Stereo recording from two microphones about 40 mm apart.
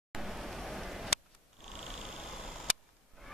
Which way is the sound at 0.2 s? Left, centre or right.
Centre.